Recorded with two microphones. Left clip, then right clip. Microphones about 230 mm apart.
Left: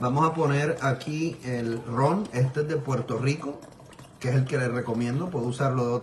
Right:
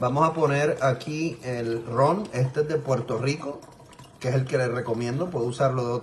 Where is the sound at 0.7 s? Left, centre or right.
Centre.